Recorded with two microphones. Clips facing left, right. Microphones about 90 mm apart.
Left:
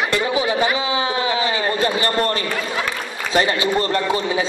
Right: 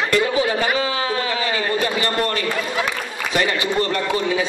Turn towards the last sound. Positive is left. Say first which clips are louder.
# left 1 dB
turn(degrees=35)  # may be behind; listen again after turning